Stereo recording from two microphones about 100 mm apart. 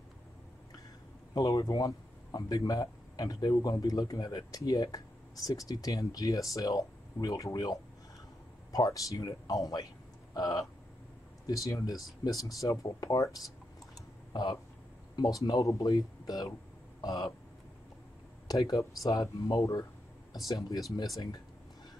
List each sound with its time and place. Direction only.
1.3 s speech: 35° left (ahead or behind)
10.3 s a sound: 40° left (ahead or behind)
11.4 s speech: 35° left (ahead or behind)
18.5 s speech: 35° left (ahead or behind)